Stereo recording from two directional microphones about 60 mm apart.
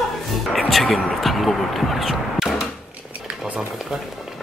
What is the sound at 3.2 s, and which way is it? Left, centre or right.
Stir, right.